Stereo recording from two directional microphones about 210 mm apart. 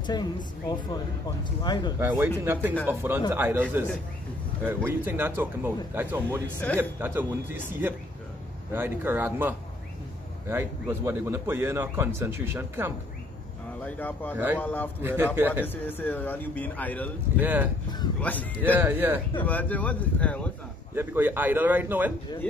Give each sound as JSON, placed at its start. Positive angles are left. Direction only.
{"t": 0.0, "sound": "speech", "side_deg": 20}
{"t": 2.0, "sound": "speech", "side_deg": -15}
{"t": 4.6, "sound": "speech", "side_deg": -10}
{"t": 13.8, "sound": "a man's voice", "side_deg": 10}
{"t": 14.3, "sound": "speech", "side_deg": -10}
{"t": 14.6, "sound": "a man's voice", "side_deg": 10}
{"t": 15.0, "sound": "speech", "side_deg": -10}
{"t": 15.6, "sound": "a man's voice", "side_deg": 10}
{"t": 17.4, "sound": "speech", "side_deg": -10}
{"t": 18.2, "sound": "a man's voice", "side_deg": 5}
{"t": 18.8, "sound": "speech", "side_deg": -10}
{"t": 19.4, "sound": "a man's voice", "side_deg": 5}
{"t": 20.9, "sound": "speech", "side_deg": -10}